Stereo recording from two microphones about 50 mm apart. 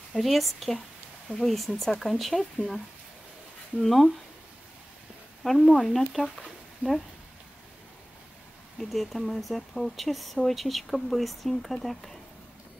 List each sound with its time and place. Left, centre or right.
0.1 s speech: centre
3.8 s speech: centre
5.4 s speech: centre
6.8 s speech: right
8.7 s speech: centre